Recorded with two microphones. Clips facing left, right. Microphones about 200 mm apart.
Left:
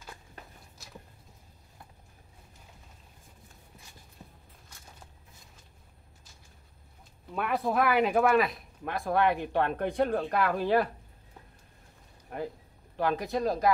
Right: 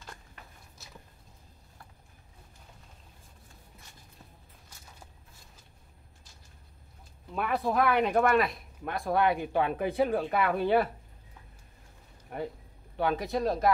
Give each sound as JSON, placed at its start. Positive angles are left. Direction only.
{"t": 4.2, "sound": "a sound", "side_deg": 15}
{"t": 7.3, "sound": "speech", "side_deg": 0}
{"t": 12.3, "sound": "speech", "side_deg": 0}